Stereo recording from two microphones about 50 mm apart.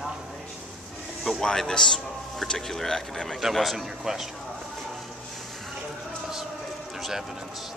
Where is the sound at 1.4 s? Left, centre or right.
Centre.